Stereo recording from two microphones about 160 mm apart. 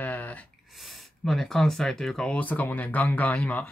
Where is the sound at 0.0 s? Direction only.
10° left (ahead or behind).